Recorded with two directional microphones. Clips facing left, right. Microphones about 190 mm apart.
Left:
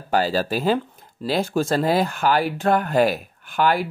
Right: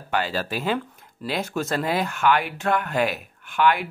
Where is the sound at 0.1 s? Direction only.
35° left (ahead or behind).